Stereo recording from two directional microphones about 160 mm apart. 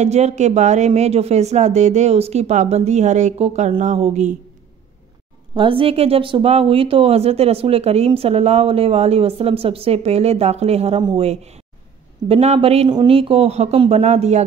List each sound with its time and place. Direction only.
0.0 s speech: 45° right (ahead or behind)
5.5 s speech: 30° right (ahead or behind)
11.0 s speech: 30° right (ahead or behind)
11.2 s speech: 40° right (ahead or behind)